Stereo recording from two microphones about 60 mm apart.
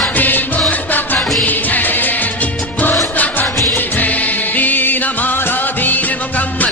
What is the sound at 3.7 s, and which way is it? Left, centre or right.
Music, left.